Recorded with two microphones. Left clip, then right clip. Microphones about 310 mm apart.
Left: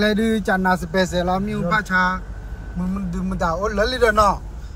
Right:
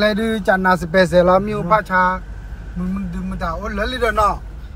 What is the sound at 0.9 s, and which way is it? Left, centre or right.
Speech, right.